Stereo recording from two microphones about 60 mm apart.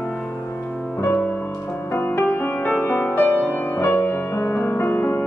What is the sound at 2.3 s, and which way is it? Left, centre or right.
Music, left.